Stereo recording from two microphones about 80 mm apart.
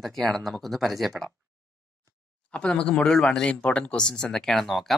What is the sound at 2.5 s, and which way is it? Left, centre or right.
Speech, centre.